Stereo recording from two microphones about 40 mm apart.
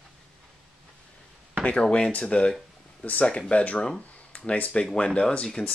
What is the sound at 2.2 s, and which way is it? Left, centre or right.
Speech, left.